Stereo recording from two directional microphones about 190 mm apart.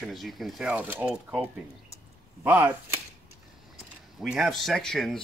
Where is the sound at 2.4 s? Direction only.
10° right (ahead or behind).